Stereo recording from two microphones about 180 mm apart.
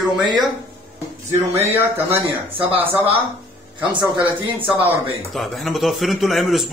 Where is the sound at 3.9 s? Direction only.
30° right (ahead or behind).